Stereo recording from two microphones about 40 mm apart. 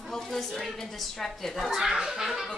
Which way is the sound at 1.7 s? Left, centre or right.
Centre.